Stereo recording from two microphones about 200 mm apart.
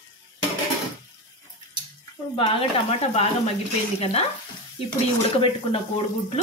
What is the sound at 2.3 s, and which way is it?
Speech, 25° left (ahead or behind).